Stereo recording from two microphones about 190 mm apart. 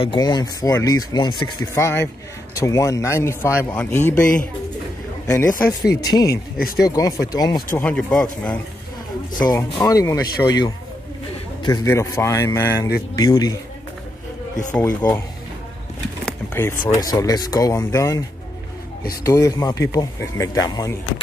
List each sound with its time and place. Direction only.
0.0 s speech: 25° left (ahead or behind)
5.2 s speech: 20° left (ahead or behind)
7.8 s speech: 5° left (ahead or behind)
9.4 s speech: 20° left (ahead or behind)
14.7 s speech: 10° left (ahead or behind)
16.3 s a sound: 10° left (ahead or behind)
16.8 s speech: 20° left (ahead or behind)
19.2 s speech: 15° left (ahead or behind)